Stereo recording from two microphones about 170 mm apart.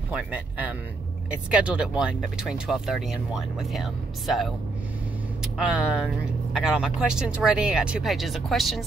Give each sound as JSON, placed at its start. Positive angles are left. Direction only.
{"t": 0.1, "sound": "speech", "side_deg": -10}